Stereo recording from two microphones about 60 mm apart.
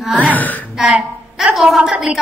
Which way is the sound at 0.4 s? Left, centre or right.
Left.